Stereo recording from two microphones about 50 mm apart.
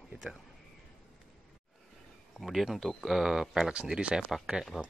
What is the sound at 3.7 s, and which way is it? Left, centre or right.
Speech, centre.